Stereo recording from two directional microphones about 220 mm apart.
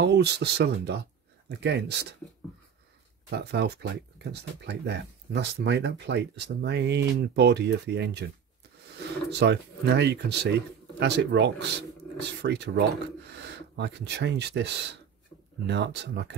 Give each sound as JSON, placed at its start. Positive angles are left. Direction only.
{"t": 0.0, "sound": "speech", "side_deg": -50}
{"t": 3.3, "sound": "speech", "side_deg": -50}
{"t": 9.3, "sound": "speech", "side_deg": -50}